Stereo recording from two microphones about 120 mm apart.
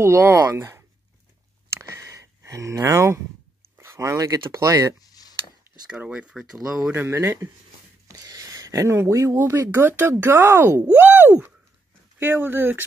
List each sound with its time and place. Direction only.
0.0 s speech: 20° right (ahead or behind)
1.8 s a sound: 25° right (ahead or behind)
3.7 s speech: 20° right (ahead or behind)
5.0 s a sound: 30° left (ahead or behind)
5.9 s speech: 10° right (ahead or behind)
6.9 s speech: 20° right (ahead or behind)